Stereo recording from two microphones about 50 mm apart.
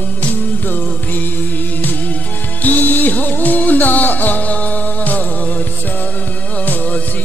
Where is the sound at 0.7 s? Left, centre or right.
Left.